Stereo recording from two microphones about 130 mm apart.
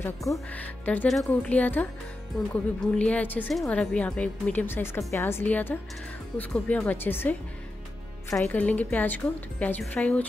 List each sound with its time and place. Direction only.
0.0 s speech: 25° left (ahead or behind)
0.5 s speech: 10° left (ahead or behind)
1.0 s speech: centre (ahead or behind)
8.5 s speech: 10° left (ahead or behind)